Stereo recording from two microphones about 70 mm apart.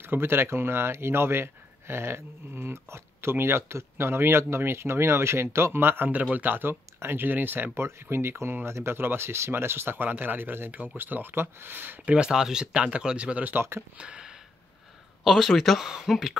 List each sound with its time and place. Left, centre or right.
0.0 s speech: right
12.2 s speech: centre
13.6 s speech: right
13.9 s a sound: centre
15.2 s speech: centre